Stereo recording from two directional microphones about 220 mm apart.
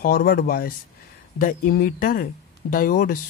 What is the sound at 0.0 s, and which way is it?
Speech, 45° left (ahead or behind).